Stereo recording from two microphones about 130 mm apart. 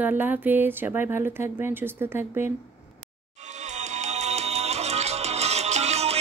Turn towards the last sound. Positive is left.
turn(degrees=-55)  # may be behind; listen again after turning